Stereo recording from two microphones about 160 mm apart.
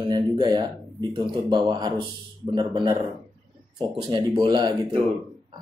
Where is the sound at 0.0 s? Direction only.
25° right (ahead or behind).